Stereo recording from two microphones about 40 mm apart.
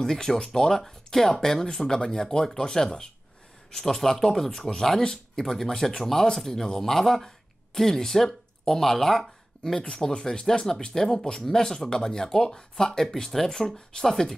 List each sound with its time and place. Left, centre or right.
0.0 s speech: centre